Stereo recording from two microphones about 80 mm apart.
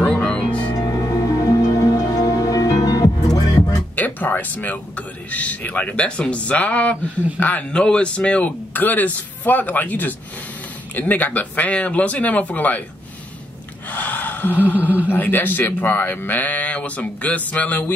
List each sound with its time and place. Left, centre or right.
0.0 s music: centre
0.7 s music: left
3.9 s speech: left
13.8 s speech: left